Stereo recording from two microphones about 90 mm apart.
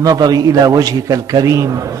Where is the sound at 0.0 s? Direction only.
45° right (ahead or behind).